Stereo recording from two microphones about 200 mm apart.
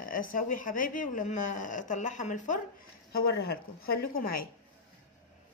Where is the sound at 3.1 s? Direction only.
50° left (ahead or behind).